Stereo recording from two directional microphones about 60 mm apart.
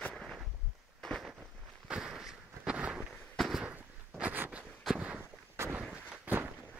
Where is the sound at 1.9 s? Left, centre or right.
Centre.